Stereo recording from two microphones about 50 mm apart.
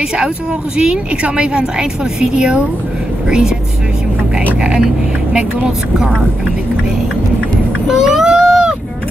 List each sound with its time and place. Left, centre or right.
0.7 s a woman's voice: centre
7.9 s vehicle: centre